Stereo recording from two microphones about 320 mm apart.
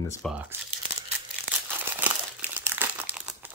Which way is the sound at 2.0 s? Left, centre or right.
Centre.